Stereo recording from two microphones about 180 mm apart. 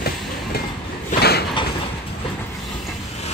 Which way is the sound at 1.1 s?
60° left (ahead or behind).